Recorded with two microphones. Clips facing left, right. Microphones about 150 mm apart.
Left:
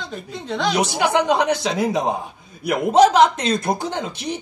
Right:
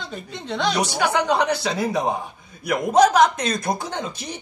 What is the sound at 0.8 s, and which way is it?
Mantra, 20° left (ahead or behind).